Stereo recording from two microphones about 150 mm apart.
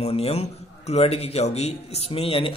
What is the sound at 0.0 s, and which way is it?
Speech, 45° left (ahead or behind).